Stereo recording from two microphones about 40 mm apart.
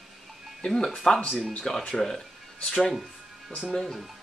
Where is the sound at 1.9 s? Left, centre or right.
Centre.